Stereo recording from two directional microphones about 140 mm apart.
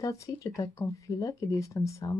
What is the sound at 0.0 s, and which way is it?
Speech, 25° left (ahead or behind).